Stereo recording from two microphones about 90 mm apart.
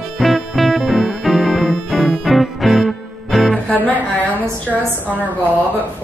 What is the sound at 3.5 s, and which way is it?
Music, 20° left (ahead or behind).